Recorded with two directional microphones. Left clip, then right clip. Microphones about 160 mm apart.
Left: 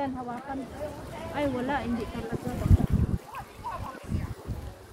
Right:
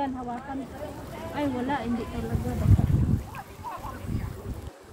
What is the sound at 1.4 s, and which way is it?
Speech, 10° left (ahead or behind).